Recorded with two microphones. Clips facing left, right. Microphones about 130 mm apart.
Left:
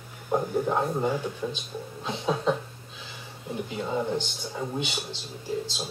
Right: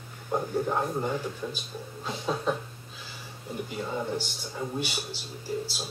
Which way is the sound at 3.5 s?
20° left (ahead or behind).